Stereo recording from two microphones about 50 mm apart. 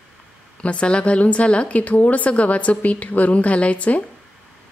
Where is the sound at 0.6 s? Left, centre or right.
Left.